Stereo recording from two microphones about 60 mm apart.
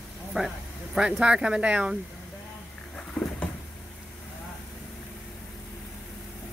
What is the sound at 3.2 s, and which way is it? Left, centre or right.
Cupboard open or close, centre.